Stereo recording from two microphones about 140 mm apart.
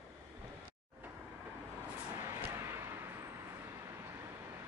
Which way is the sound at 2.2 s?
20° right (ahead or behind).